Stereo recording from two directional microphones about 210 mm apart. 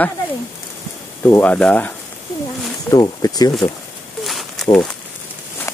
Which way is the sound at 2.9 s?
20° left (ahead or behind).